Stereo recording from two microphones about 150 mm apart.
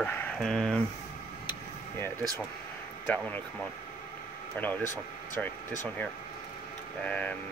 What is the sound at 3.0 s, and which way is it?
Speech, 10° left (ahead or behind).